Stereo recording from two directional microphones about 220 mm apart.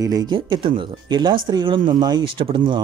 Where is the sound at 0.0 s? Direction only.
15° right (ahead or behind).